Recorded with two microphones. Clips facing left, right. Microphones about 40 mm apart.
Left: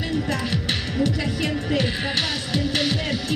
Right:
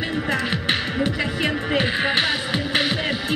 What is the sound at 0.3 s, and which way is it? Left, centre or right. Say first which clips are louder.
Speech: right 3 dB; right.